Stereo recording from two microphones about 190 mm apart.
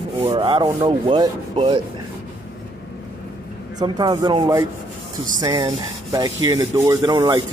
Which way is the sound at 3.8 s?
25° right (ahead or behind).